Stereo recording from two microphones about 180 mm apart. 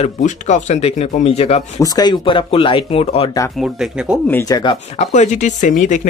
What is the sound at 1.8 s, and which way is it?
Speech, 20° left (ahead or behind).